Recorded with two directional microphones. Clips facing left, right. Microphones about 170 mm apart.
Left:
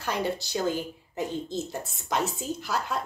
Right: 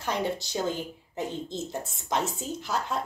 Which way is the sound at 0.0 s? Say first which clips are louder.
Even; 20° right (ahead or behind).